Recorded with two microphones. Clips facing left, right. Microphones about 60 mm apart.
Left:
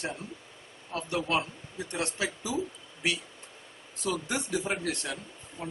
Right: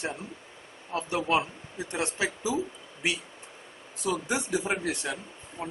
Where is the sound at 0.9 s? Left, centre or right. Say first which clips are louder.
Right 3 dB; right.